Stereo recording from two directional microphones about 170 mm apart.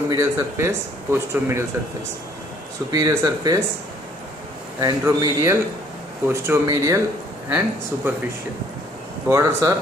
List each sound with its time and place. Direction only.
0.1 s speech: 15° right (ahead or behind)
2.9 s speech: 20° right (ahead or behind)
4.7 s speech: 20° right (ahead or behind)
9.3 s speech: 20° right (ahead or behind)